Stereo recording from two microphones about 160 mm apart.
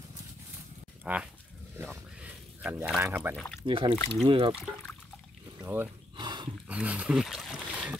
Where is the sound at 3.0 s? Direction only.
15° right (ahead or behind).